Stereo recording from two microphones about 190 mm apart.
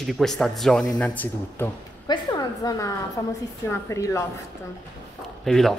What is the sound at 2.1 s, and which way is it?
A woman's voice, 20° left (ahead or behind).